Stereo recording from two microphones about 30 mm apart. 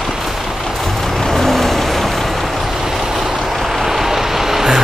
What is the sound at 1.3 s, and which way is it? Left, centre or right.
Vehicle, centre.